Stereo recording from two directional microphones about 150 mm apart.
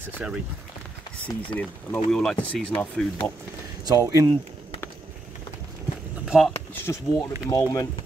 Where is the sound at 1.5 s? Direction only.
10° left (ahead or behind).